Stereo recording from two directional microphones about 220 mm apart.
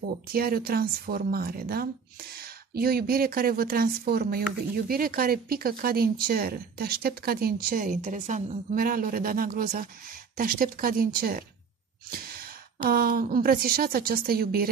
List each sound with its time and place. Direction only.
0.3 s a woman's voice: 45° right (ahead or behind)